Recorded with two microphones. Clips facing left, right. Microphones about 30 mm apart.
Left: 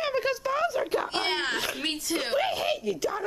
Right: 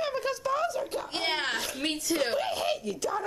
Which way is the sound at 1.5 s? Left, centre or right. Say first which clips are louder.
Left 3 dB; centre.